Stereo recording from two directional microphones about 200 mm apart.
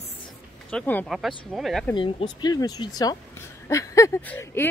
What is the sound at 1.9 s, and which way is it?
A woman's voice, 25° left (ahead or behind).